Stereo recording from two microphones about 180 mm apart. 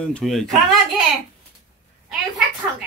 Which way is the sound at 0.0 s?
5° left (ahead or behind).